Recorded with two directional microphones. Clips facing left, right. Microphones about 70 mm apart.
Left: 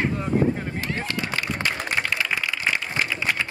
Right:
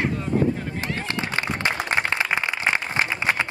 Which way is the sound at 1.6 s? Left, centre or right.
Right.